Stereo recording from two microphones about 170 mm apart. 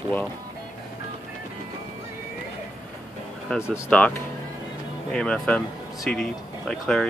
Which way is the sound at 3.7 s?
10° left (ahead or behind).